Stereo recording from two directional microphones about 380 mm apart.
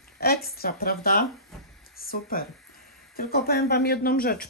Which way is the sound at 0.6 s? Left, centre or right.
Left.